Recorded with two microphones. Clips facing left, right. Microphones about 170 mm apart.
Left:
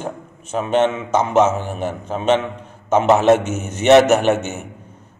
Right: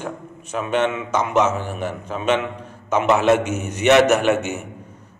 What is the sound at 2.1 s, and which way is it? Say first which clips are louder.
A man's voice: left 3 dB; 30° left (ahead or behind).